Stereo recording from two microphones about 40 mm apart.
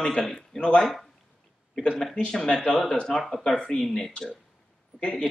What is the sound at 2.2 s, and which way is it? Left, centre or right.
Speech, centre.